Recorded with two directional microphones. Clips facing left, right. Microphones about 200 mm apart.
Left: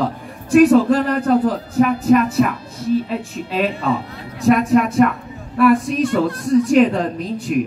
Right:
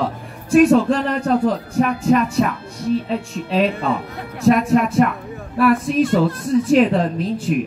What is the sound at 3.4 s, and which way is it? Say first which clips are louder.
Speech: right 1 dB; centre (ahead or behind).